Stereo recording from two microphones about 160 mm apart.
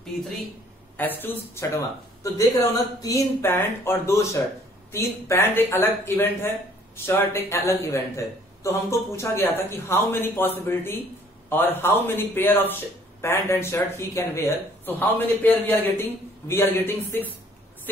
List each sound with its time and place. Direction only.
0.9 s speech: 10° left (ahead or behind)